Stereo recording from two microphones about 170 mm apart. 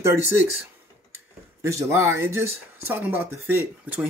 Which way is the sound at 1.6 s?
15° right (ahead or behind).